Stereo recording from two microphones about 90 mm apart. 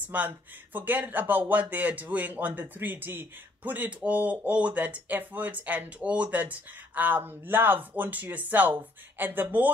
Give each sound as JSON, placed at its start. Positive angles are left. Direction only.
{"t": 0.0, "sound": "a man's voice", "side_deg": -15}